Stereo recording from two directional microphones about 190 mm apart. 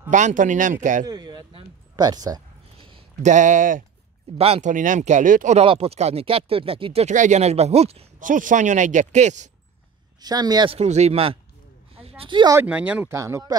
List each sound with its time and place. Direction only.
0.1 s speech: 40° right (ahead or behind)
1.0 s a sound: 20° right (ahead or behind)
3.2 s speech: 40° right (ahead or behind)
10.2 s speech: 20° right (ahead or behind)
11.9 s a sound: 30° right (ahead or behind)
12.6 s speech: 5° right (ahead or behind)